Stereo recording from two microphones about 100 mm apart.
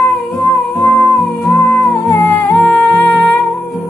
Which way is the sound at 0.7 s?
20° left (ahead or behind).